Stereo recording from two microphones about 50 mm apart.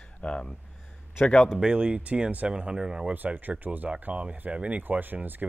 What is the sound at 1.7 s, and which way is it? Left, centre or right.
Speech, right.